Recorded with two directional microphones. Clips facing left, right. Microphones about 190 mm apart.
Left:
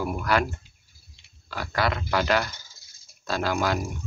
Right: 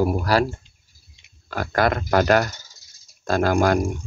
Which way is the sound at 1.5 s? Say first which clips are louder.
Right 6 dB; 50° right (ahead or behind).